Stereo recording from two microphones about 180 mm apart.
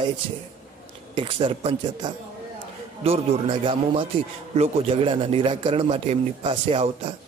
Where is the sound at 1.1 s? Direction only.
30° right (ahead or behind).